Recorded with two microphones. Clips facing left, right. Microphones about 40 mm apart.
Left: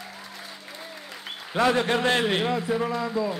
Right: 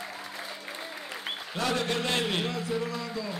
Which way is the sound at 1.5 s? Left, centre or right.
Left.